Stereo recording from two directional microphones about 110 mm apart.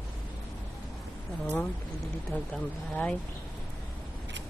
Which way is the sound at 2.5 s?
5° left (ahead or behind).